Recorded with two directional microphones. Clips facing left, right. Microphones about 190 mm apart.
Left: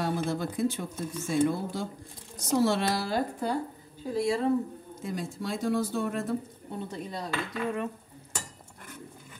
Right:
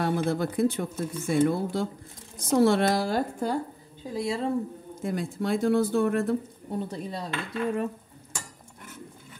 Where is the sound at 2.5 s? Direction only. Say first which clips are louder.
Right 4 dB; 55° right (ahead or behind).